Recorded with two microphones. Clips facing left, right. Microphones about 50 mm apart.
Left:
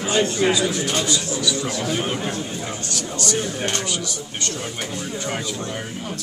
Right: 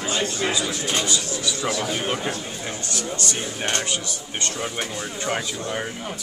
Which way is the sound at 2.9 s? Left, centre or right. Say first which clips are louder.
Left 4 dB; right.